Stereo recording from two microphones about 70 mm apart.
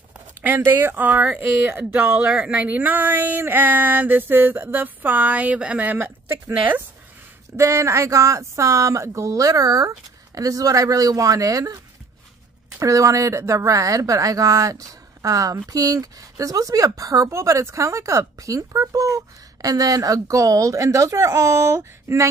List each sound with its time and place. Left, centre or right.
0.4 s speech: right
7.5 s speech: right